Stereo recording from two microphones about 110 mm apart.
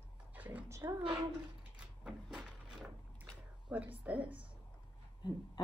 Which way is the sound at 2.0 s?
5° right (ahead or behind).